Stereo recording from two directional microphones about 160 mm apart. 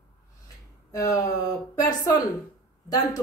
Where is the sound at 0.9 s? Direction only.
20° left (ahead or behind).